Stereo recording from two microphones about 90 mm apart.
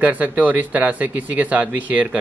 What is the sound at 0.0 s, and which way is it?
Speech, 20° right (ahead or behind).